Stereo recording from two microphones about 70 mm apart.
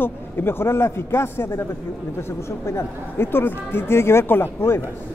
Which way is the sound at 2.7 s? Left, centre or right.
Left.